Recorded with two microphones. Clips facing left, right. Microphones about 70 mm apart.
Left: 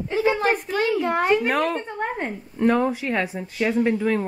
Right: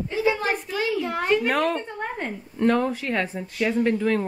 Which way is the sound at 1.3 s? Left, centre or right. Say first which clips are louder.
Left 1 dB; centre.